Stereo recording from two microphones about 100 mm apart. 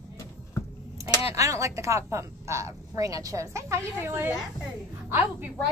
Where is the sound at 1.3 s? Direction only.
30° right (ahead or behind).